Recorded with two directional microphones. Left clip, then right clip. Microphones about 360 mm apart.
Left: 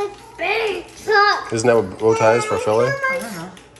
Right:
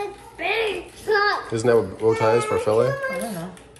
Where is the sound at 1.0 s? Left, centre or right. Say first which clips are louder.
Left 5 dB; left.